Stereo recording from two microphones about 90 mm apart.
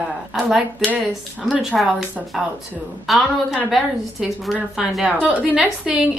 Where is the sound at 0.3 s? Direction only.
5° right (ahead or behind).